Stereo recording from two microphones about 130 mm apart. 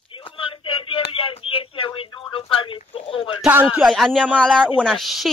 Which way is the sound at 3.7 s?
Centre (ahead or behind).